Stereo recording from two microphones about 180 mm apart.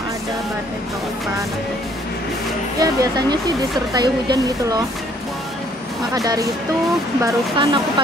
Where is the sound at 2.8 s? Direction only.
20° right (ahead or behind).